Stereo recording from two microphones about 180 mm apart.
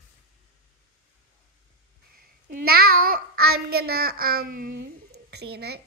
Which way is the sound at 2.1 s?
55° right (ahead or behind).